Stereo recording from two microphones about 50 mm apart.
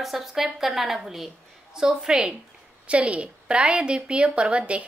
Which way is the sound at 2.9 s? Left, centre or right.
Right.